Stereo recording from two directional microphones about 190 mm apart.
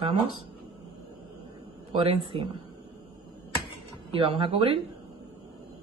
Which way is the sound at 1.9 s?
30° right (ahead or behind).